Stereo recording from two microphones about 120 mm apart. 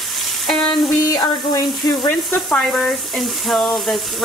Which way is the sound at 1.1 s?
30° left (ahead or behind).